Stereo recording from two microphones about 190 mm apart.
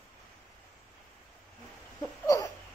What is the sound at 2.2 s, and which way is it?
Hiccup, 20° left (ahead or behind).